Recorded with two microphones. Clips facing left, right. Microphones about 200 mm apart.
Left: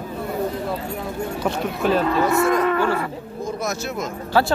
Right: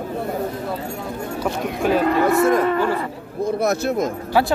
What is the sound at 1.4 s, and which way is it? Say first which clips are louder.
Speech: right 1 dB; 10° right (ahead or behind).